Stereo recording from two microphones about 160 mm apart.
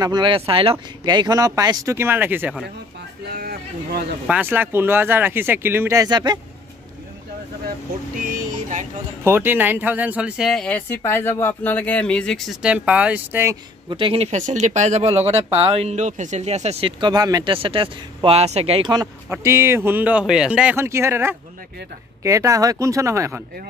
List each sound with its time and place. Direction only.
0.0 s speech: 25° right (ahead or behind)
3.3 s a sound: 80° right
4.3 s a man's voice: 10° right (ahead or behind)
8.2 s music: 55° right (ahead or behind)
9.2 s a man's voice: 15° right (ahead or behind); by 12.4 s 5° left (ahead or behind)
12.6 s a man's voice: 5° right (ahead or behind)
13.8 s speech: 35° right (ahead or behind)
17.0 s speech: 25° right (ahead or behind)
19.2 s a man's voice: 15° right (ahead or behind)